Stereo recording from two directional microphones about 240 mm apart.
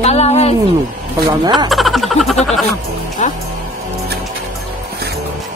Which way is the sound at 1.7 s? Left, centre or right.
Centre.